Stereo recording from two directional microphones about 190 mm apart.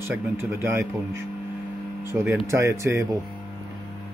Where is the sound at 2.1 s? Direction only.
15° right (ahead or behind).